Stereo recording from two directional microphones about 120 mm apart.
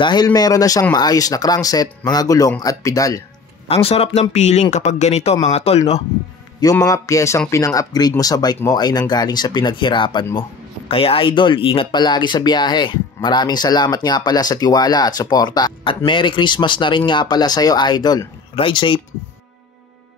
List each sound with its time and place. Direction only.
0.0 s speech: 35° left (ahead or behind)
3.6 s speech: 55° left (ahead or behind)
6.6 s speech: 30° left (ahead or behind)